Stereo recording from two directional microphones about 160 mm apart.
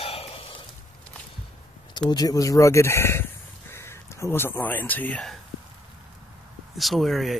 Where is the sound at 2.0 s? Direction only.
25° left (ahead or behind); by 5.4 s 5° left (ahead or behind).